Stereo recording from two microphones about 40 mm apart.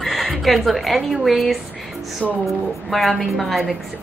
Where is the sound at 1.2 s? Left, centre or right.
Centre.